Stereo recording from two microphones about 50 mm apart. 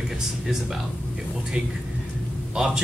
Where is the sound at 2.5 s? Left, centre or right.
Centre.